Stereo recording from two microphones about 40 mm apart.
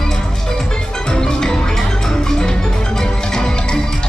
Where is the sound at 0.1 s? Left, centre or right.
Centre.